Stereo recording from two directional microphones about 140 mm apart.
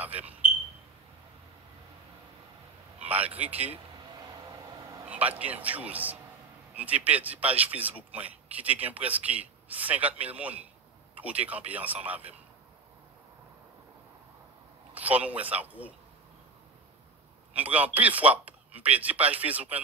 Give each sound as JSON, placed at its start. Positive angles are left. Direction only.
{"t": 3.1, "sound": "a man's voice", "side_deg": -10}
{"t": 4.1, "sound": "vehicle", "side_deg": -30}
{"t": 5.0, "sound": "a man's voice", "side_deg": -10}
{"t": 15.0, "sound": "a man's voice", "side_deg": -10}
{"t": 17.6, "sound": "a man's voice", "side_deg": -10}